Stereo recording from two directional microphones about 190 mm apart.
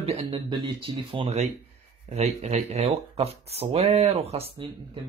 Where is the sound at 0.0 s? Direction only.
30° right (ahead or behind).